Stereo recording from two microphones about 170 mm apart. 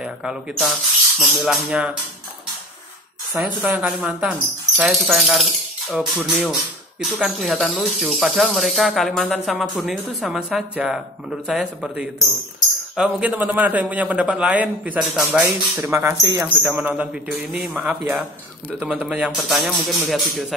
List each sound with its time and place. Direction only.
0.0 s speech: 5° right (ahead or behind)
3.3 s a man's voice: 10° right (ahead or behind)
15.4 s a man's voice: 15° right (ahead or behind); by 20.4 s centre (ahead or behind)